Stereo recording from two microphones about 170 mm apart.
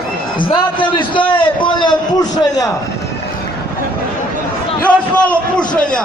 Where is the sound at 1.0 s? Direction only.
30° left (ahead or behind).